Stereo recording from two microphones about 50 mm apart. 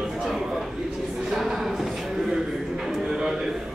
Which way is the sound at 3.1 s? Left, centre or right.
Centre.